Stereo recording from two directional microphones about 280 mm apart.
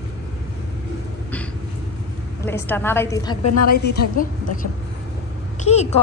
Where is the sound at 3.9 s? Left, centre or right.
Left.